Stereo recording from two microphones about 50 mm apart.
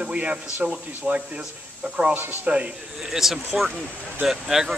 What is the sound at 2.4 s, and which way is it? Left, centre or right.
Speech, right.